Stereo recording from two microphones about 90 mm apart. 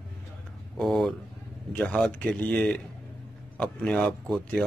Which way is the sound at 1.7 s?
15° left (ahead or behind).